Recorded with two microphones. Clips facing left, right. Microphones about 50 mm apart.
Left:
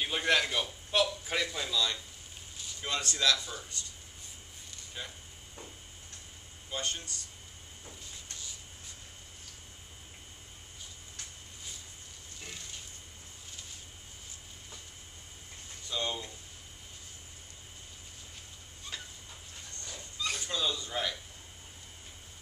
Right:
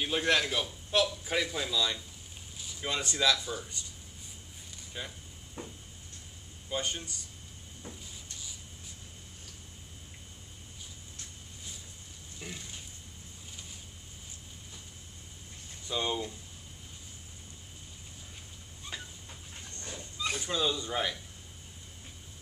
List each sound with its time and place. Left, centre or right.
0.0 s a man's voice: centre
5.0 s speech: centre
5.6 s a sound: right
6.7 s speech: centre
12.4 s speech: centre
15.9 s speech: centre
18.9 s train: centre
19.9 s cat: centre